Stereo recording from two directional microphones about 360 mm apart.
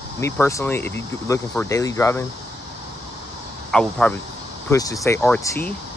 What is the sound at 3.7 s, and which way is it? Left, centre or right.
Speech, centre.